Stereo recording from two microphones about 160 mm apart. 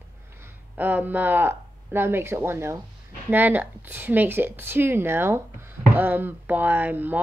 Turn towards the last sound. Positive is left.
turn(degrees=-10)  # may be behind; listen again after turning